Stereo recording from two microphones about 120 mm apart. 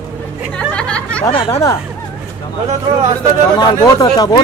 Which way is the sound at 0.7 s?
10° left (ahead or behind).